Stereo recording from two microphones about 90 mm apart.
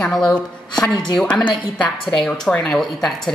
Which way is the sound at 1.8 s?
65° left (ahead or behind).